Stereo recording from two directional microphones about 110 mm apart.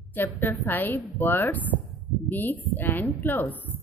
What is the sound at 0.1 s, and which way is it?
A woman's voice, 20° left (ahead or behind).